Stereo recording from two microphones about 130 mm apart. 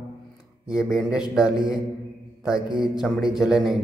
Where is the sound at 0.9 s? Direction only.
5° right (ahead or behind).